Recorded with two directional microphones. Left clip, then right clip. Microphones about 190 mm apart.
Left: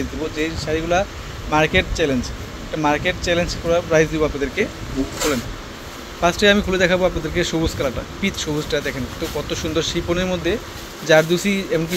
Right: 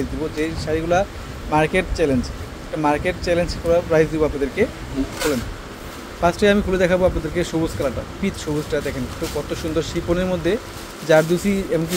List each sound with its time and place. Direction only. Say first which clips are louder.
0.4 s speech: left 1 dB; 15° right (ahead or behind)
6.2 s speech: left 1 dB; 10° right (ahead or behind)